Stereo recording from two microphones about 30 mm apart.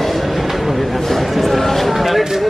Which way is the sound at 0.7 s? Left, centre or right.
Centre.